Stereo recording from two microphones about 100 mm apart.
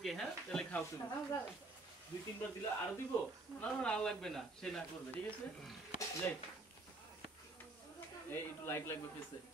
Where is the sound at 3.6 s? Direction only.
10° left (ahead or behind).